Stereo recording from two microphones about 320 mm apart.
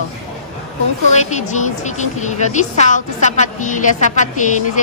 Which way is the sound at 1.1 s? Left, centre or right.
Left.